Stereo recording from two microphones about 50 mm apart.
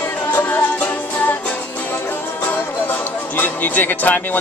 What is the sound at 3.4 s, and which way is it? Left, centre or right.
Speech, left.